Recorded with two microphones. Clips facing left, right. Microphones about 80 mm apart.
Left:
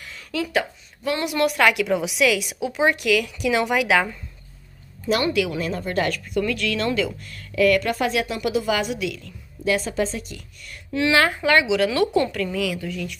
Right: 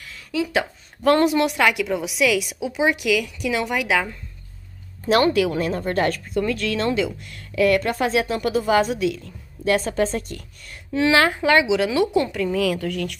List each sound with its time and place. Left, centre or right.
0.0 s a sound: centre
1.2 s a woman's voice: right
1.6 s a woman's voice: centre
5.2 s speech: right
10.7 s a woman's voice: right
12.5 s speech: right
12.8 s speech: right